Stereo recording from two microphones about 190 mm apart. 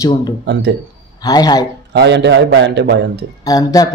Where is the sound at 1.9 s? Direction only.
65° right (ahead or behind).